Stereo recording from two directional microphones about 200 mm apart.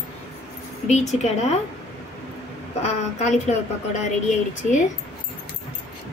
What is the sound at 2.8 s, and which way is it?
A woman's voice, 35° left (ahead or behind).